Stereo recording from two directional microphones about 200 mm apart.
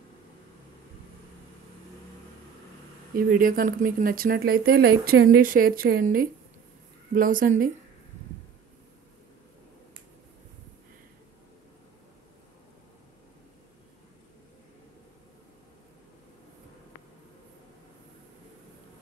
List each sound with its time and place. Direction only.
3.2 s speech: 45° right (ahead or behind)